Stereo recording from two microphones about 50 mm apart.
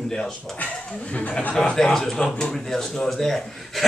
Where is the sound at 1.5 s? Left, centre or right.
Centre.